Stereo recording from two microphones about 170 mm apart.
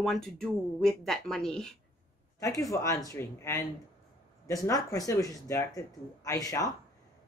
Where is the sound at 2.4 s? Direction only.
20° left (ahead or behind).